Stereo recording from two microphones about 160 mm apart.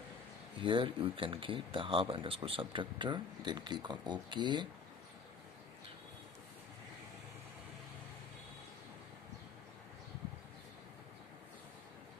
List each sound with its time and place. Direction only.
0.6 s speech: 30° right (ahead or behind)